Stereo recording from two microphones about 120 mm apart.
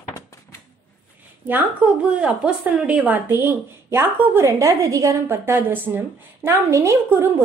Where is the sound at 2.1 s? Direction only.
10° right (ahead or behind).